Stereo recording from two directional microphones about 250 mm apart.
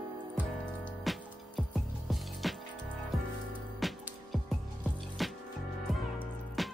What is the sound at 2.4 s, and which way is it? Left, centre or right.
Music, centre.